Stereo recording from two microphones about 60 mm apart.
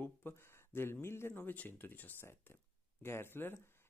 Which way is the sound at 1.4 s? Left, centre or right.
Left.